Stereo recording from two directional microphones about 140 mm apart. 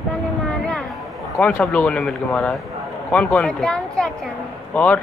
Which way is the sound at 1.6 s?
5° left (ahead or behind).